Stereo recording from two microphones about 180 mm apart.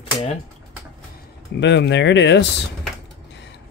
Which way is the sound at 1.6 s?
75° left (ahead or behind).